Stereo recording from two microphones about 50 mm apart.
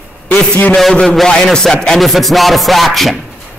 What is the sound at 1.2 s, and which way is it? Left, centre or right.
Speech, centre.